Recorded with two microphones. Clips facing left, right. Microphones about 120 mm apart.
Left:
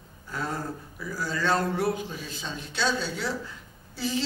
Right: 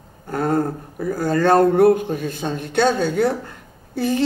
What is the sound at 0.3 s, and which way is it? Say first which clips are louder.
A man's voice: right 12 dB; 55° right (ahead or behind).